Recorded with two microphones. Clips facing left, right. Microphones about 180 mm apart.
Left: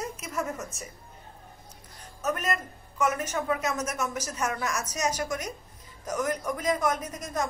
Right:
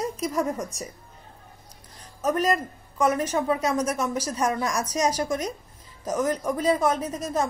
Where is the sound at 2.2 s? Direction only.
30° right (ahead or behind).